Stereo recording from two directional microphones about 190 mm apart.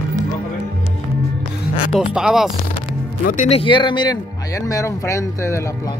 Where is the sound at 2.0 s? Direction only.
5° right (ahead or behind).